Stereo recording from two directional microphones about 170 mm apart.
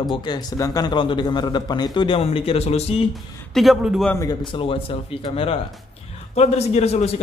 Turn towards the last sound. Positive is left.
turn(degrees=40)  # may be behind; listen again after turning